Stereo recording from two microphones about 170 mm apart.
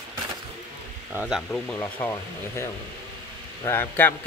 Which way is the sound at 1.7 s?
10° left (ahead or behind).